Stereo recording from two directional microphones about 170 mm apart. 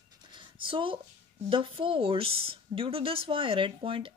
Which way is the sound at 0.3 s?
30° right (ahead or behind).